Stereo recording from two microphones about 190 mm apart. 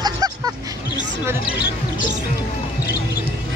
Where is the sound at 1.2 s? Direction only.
5° right (ahead or behind).